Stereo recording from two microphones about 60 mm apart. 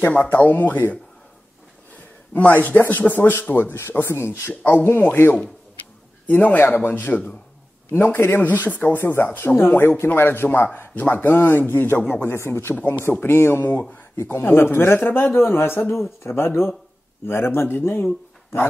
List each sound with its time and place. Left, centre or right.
0.0 s speech: left
2.5 s speech: left
3.9 s speech: left
4.6 s speech: left
12.3 s speech: left
12.7 s speech: left
13.4 s speech: left